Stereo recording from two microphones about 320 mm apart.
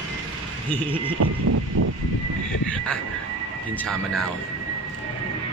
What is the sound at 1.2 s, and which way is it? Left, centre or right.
Vehicle, right.